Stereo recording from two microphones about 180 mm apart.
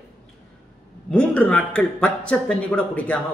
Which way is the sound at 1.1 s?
5° left (ahead or behind).